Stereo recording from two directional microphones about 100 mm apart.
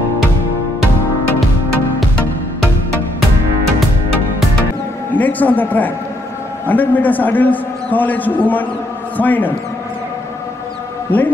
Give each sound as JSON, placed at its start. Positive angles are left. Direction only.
{"t": 5.1, "sound": "a man's voice", "side_deg": 15}
{"t": 11.1, "sound": "a man's voice", "side_deg": 15}